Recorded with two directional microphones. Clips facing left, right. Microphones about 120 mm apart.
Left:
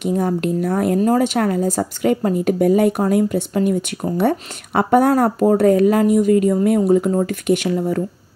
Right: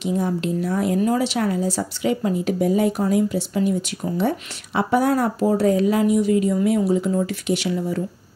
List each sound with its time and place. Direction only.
0.0 s speech: 50° left (ahead or behind)